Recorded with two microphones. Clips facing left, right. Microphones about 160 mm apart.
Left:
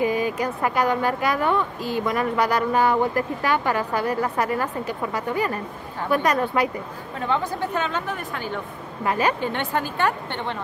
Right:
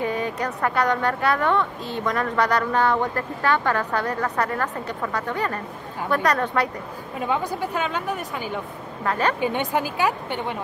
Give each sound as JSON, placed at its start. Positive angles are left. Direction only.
{"t": 0.0, "sound": "a sound", "side_deg": 10}
{"t": 0.6, "sound": "speech", "side_deg": 10}
{"t": 7.2, "sound": "a woman's voice", "side_deg": -10}
{"t": 9.0, "sound": "speech", "side_deg": 10}
{"t": 9.4, "sound": "a woman's voice", "side_deg": -15}